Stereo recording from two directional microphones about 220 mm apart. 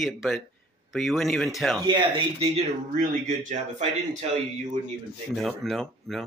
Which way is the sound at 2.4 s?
30° right (ahead or behind).